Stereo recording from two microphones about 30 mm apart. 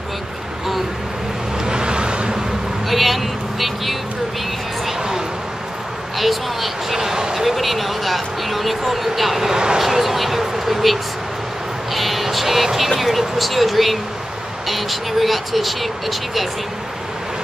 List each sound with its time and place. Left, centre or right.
1.7 s vehicle: right
2.9 s vehicle: centre
6.1 s vehicle: centre
7.0 s vehicle: right
7.3 s a sound: centre
11.9 s music: centre
13.4 s speech: centre